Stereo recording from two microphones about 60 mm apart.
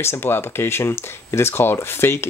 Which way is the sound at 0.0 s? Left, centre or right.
Left.